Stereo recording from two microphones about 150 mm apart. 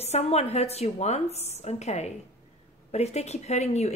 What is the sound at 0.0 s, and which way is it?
Speech, 45° left (ahead or behind).